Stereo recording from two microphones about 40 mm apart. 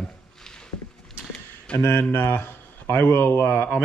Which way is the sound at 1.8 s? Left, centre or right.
Left.